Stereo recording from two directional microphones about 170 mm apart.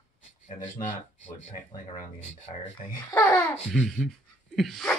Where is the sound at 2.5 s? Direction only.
40° left (ahead or behind).